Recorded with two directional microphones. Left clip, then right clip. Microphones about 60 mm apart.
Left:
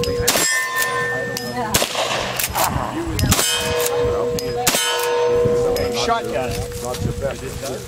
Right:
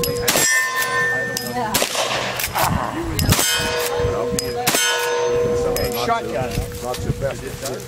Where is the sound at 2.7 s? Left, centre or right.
Right.